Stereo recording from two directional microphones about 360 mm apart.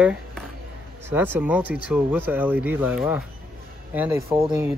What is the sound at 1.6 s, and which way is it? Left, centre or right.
Speech, left.